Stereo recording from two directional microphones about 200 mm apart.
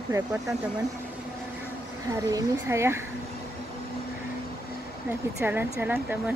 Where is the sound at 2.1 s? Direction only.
15° right (ahead or behind).